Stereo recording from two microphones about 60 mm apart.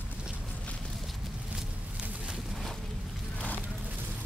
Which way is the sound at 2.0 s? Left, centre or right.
Centre.